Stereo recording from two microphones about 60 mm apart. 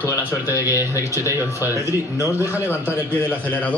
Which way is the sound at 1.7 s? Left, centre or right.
Left.